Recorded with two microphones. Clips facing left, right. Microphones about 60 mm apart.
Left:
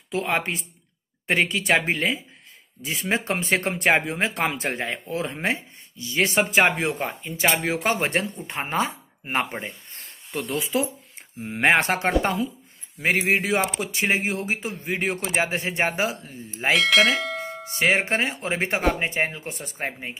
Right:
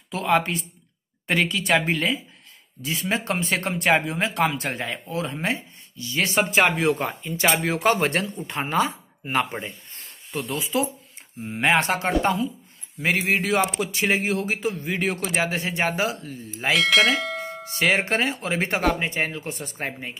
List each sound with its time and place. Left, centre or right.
0.1 s speech: left
7.0 s speech: centre
7.9 s speech: left
9.6 s a sound: left
10.6 s speech: left
16.7 s bell: centre
17.6 s speech: left
19.8 s speech: centre